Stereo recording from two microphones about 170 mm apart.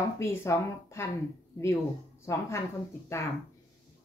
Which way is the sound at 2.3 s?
15° left (ahead or behind).